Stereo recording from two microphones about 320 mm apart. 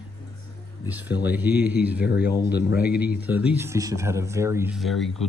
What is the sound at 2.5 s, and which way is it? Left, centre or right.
Speech, left.